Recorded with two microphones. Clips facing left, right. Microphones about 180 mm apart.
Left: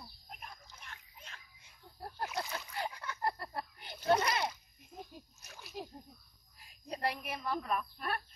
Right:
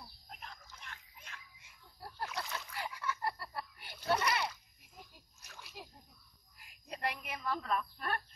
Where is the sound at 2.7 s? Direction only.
40° left (ahead or behind).